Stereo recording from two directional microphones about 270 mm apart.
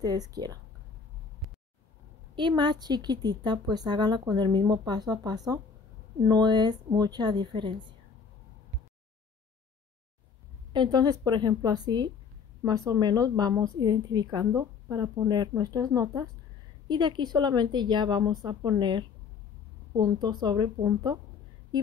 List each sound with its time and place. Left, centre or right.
0.0 s a woman's voice: centre
2.3 s a woman's voice: centre
10.7 s a woman's voice: centre